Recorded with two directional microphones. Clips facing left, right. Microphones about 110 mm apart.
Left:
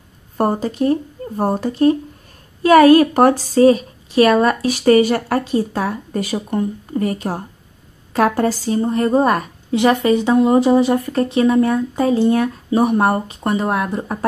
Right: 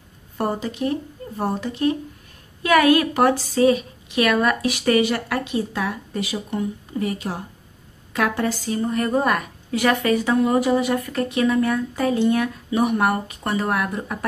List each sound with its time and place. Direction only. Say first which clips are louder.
0.4 s a woman's voice: left 6 dB; 40° left (ahead or behind)